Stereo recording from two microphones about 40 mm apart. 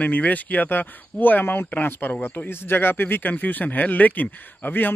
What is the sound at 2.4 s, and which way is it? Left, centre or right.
Speech, left.